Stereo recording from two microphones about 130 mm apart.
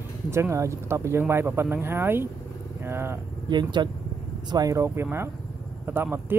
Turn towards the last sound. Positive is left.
turn(degrees=-15)  # may be behind; listen again after turning